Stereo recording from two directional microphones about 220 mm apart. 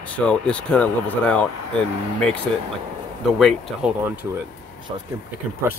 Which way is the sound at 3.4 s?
Centre (ahead or behind).